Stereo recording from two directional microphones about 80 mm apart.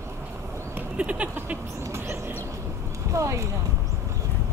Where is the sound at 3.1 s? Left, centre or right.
Right.